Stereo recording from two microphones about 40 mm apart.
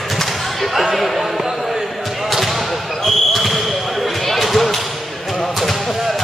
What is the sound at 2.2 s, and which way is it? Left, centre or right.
Basketball bounce, centre.